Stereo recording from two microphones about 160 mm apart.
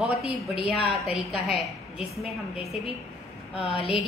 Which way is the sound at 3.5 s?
40° left (ahead or behind).